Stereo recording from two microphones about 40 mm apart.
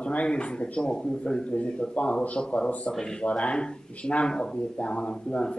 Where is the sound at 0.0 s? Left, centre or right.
Left.